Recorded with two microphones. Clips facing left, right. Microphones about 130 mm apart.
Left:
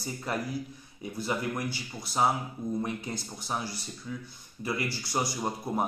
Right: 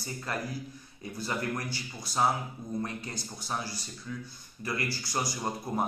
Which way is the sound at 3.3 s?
20° left (ahead or behind).